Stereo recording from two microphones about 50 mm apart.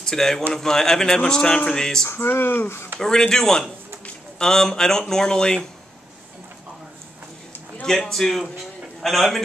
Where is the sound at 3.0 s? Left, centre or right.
Centre.